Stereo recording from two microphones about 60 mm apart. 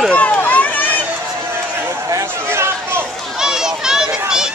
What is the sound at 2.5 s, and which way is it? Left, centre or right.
Chatter, right.